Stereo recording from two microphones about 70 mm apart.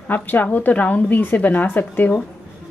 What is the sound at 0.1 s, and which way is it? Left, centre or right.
A woman's voice, left.